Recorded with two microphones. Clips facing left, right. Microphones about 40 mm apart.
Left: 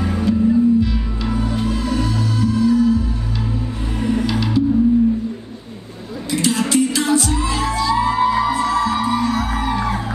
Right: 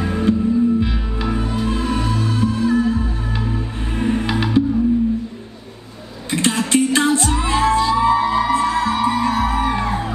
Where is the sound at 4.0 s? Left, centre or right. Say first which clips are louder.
Even; right.